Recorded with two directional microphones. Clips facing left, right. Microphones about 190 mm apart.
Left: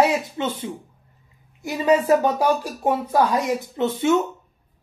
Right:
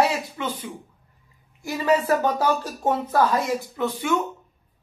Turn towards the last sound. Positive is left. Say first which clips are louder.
# left 5 dB
turn(degrees=25)  # may be behind; listen again after turning